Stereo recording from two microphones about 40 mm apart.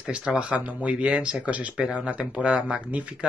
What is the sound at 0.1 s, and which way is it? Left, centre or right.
Speech, centre.